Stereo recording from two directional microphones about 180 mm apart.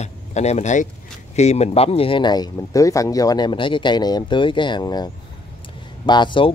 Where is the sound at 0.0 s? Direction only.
40° left (ahead or behind).